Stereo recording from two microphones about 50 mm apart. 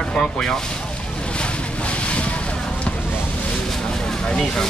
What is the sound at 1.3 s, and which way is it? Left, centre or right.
Boat, left.